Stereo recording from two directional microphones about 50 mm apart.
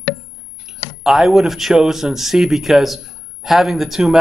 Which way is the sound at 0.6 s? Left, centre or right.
Centre.